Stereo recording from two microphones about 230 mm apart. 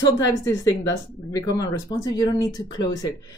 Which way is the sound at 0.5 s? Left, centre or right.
Centre.